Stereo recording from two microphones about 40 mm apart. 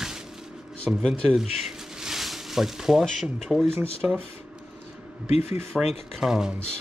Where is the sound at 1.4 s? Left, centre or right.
Centre.